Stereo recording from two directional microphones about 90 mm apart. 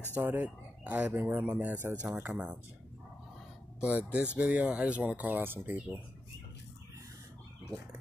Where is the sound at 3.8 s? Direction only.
15° right (ahead or behind).